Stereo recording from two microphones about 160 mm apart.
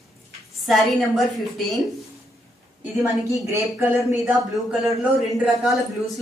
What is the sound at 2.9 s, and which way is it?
A woman's voice, centre (ahead or behind).